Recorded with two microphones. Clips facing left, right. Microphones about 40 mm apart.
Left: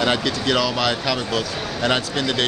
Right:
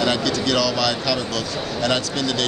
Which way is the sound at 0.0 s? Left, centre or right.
Centre.